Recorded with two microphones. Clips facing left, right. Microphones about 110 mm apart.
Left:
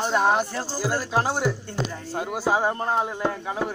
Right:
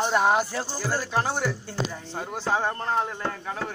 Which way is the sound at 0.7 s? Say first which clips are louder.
Left 3 dB; 10° left (ahead or behind).